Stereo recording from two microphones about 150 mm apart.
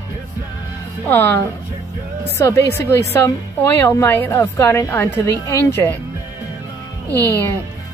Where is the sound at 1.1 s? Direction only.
15° left (ahead or behind).